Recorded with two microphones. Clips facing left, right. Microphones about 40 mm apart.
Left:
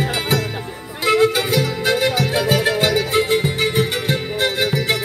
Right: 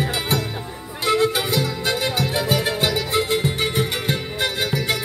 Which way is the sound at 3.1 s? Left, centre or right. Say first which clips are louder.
Left 3 dB; left.